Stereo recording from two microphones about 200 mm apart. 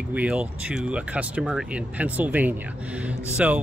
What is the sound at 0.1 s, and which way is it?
Speech, 5° right (ahead or behind).